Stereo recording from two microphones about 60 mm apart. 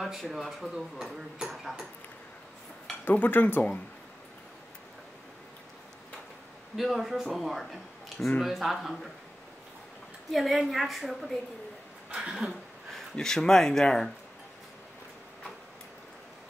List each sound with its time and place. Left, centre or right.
0.0 s speech: centre
3.1 s speech: left
6.8 s speech: centre
10.3 s speech: centre
12.2 s speech: centre
12.4 s speech: centre